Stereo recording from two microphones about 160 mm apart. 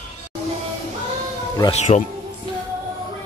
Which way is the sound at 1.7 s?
45° left (ahead or behind).